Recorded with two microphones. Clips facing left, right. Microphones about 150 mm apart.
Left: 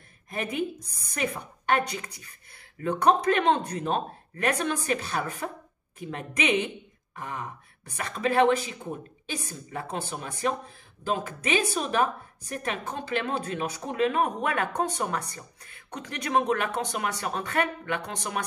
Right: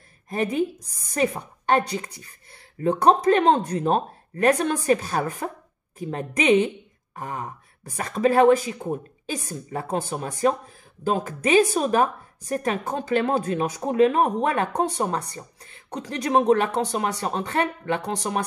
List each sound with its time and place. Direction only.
0.3 s a woman's voice: 35° right (ahead or behind)